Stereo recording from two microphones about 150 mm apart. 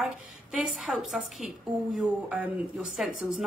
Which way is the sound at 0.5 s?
5° right (ahead or behind).